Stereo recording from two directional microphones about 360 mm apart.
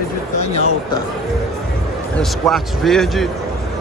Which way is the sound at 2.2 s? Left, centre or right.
Centre.